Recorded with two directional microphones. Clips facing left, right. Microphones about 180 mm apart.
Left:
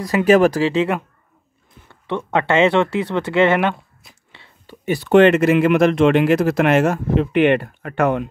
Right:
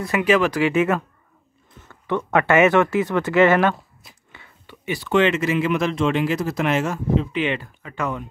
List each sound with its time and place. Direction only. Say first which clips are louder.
0.0 s speech: left 5 dB; 40° left (ahead or behind)
1.9 s speech: even; 25° left (ahead or behind)
4.3 s a sound: left 3 dB; 25° left (ahead or behind)
4.8 s speech: left 7 dB; 55° left (ahead or behind)